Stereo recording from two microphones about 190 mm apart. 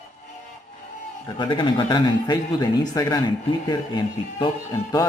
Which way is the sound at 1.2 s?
25° left (ahead or behind).